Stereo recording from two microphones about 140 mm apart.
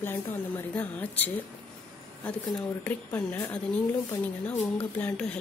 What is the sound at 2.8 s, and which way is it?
Speech, 10° left (ahead or behind).